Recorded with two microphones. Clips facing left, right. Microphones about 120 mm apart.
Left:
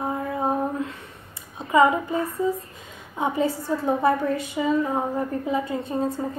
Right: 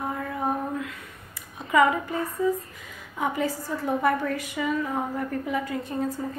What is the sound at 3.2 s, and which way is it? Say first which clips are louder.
A woman's voice: left 3 dB; 25° left (ahead or behind).